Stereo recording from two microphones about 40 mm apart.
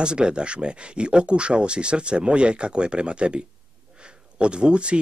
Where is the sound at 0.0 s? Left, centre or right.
Right.